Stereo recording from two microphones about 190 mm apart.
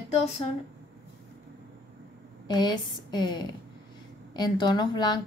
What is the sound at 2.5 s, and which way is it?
A woman's voice, 20° left (ahead or behind).